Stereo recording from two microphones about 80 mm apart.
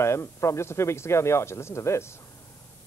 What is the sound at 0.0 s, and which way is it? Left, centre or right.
Speech, left.